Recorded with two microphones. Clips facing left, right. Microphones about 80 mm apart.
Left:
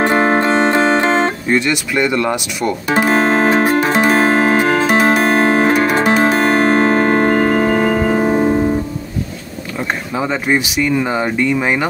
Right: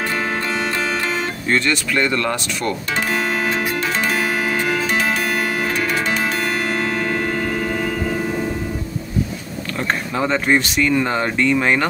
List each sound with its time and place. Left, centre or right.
0.0 s music: left
1.5 s speech: centre
2.9 s music: left
9.8 s speech: centre